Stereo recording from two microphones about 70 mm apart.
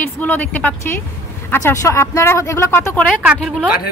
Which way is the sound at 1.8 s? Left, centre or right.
Left.